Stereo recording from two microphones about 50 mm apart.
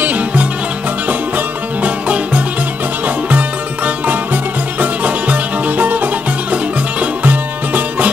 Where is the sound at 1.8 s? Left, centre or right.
Right.